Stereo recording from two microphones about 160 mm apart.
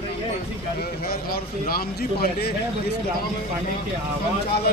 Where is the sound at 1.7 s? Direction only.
75° left (ahead or behind).